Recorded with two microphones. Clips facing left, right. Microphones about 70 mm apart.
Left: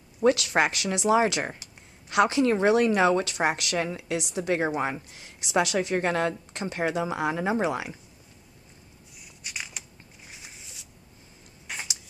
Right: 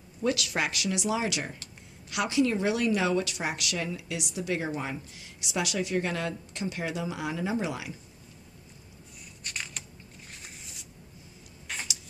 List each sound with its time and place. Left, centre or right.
0.2 s a woman's voice: left
9.4 s a sound: centre
11.6 s tick-tock: centre